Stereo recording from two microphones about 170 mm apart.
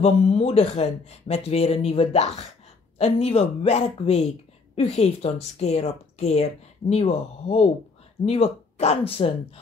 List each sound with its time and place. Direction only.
0.0 s a woman's voice: 35° left (ahead or behind)